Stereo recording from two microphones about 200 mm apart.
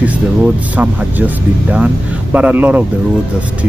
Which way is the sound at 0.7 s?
5° right (ahead or behind).